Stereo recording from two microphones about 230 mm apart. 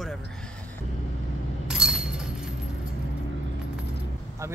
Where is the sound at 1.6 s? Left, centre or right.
Centre.